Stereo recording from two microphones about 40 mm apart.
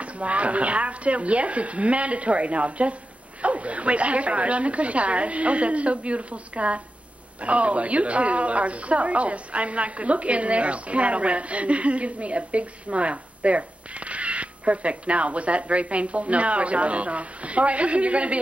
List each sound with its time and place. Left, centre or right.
0.0 s speech: right